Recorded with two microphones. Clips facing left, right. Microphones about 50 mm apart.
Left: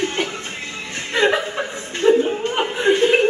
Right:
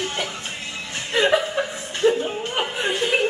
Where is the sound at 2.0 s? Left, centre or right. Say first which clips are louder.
Left 4 dB; left.